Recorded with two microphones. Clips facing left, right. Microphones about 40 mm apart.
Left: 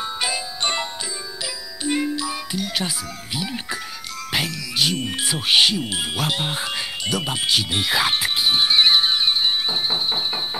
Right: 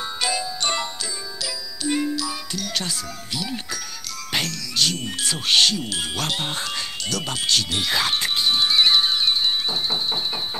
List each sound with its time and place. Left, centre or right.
0.2 s music: centre
1.9 s music: left
3.3 s speech: left
8.5 s music: left